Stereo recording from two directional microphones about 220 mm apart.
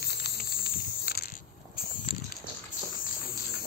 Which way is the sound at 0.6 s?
45° left (ahead or behind).